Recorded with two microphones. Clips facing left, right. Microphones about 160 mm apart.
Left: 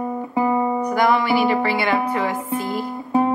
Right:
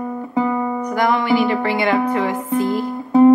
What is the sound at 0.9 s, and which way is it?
Music, 10° left (ahead or behind).